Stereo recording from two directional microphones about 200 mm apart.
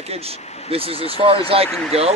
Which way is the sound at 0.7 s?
30° right (ahead or behind).